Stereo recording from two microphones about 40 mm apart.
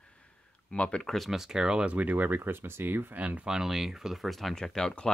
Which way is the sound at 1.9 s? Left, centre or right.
Right.